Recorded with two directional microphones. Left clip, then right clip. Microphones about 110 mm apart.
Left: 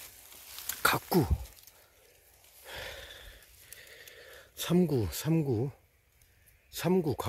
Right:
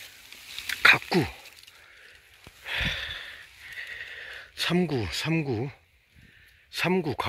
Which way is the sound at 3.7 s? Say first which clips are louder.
Right 13 dB; 20° left (ahead or behind).